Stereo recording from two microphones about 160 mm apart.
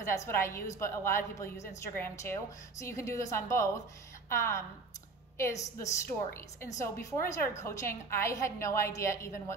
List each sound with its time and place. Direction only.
0.0 s a woman's voice: 20° left (ahead or behind)